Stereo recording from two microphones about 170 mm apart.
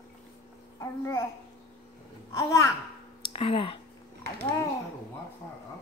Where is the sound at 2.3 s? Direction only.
20° left (ahead or behind).